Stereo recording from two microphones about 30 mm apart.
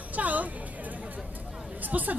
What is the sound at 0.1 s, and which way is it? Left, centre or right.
Music, right.